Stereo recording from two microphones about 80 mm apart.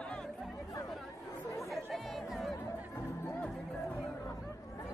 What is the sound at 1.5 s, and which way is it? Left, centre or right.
Chatter, centre.